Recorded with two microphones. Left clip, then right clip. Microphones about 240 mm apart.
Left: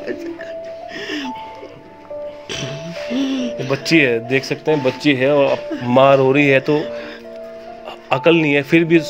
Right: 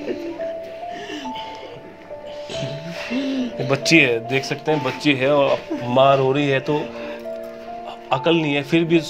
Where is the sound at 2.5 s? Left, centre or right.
Left.